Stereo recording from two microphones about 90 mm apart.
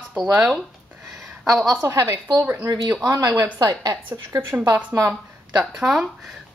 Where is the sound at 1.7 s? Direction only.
35° right (ahead or behind).